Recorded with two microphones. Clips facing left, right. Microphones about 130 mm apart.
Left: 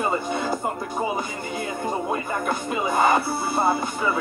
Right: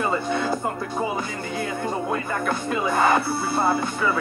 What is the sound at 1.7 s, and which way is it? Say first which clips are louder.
Music: left 1 dB; 20° left (ahead or behind).